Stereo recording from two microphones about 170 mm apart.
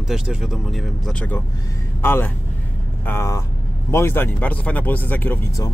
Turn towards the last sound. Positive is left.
turn(degrees=15)  # may be behind; listen again after turning